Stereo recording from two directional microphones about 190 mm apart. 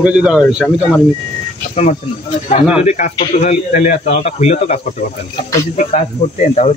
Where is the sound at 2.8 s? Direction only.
35° left (ahead or behind).